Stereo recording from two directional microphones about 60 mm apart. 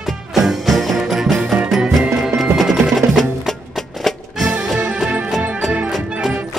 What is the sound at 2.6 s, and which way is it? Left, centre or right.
Percussion, centre.